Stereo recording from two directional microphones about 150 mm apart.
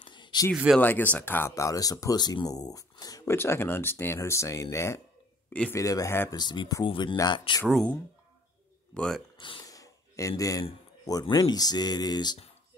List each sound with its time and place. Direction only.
0.0 s a sound: 30° left (ahead or behind)
0.7 s speech: 10° left (ahead or behind)
3.3 s speech: 15° left (ahead or behind)
5.8 s speech: 20° left (ahead or behind)
6.3 s speech: 30° left (ahead or behind)
7.6 s speech: 5° left (ahead or behind)
9.4 s a sound: 30° left (ahead or behind)
10.6 s speech: 30° left (ahead or behind)